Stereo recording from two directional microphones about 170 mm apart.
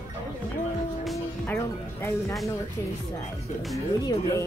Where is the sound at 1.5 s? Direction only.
15° left (ahead or behind).